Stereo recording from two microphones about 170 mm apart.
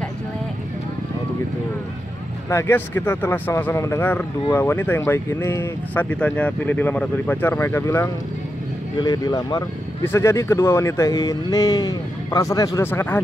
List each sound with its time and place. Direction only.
2.5 s a man's voice: 15° left (ahead or behind)